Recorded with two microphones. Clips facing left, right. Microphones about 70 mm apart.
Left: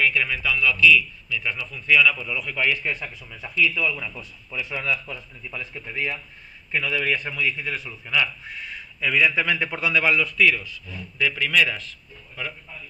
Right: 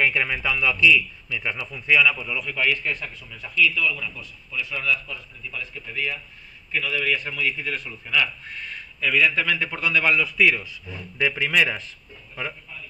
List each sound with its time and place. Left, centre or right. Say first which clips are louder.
0.0 s a man's voice: even; right; by 7.2 s left
7.6 s speech: even; centre